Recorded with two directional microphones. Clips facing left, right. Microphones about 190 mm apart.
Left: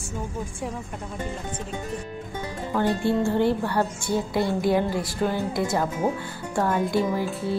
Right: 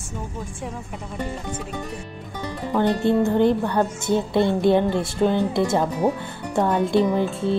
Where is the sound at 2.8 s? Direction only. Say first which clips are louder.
Right 4 dB; 20° right (ahead or behind).